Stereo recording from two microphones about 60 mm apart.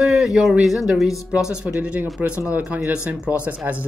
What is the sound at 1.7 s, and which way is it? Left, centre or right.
Speech, right.